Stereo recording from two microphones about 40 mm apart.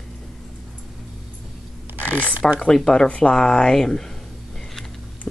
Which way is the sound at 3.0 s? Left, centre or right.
Left.